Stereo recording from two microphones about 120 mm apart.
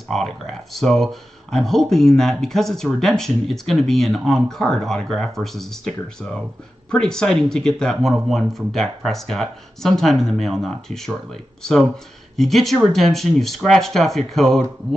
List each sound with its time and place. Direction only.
0.1 s speech: centre (ahead or behind)
12.4 s speech: centre (ahead or behind)